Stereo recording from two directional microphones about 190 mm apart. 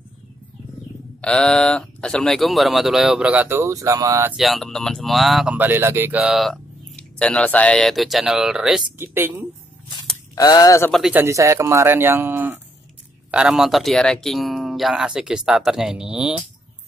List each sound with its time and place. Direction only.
1.2 s speech: 5° left (ahead or behind); by 4.4 s 15° right (ahead or behind)
4.4 s speech: centre (ahead or behind)
6.1 s speech: centre (ahead or behind)
10.3 s speech: 20° left (ahead or behind)
10.9 s speech: 5° right (ahead or behind)